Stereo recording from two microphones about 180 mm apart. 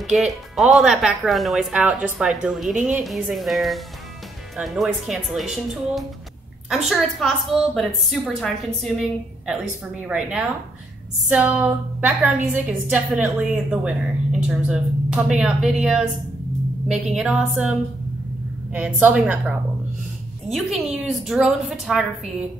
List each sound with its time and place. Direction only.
0.0 s speech: centre (ahead or behind)
10.0 s a woman's voice: 5° right (ahead or behind)
20.5 s speech: centre (ahead or behind)